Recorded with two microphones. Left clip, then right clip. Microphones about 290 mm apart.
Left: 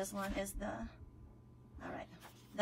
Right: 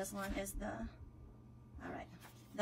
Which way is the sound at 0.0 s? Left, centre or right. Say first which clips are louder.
Left 2 dB; centre.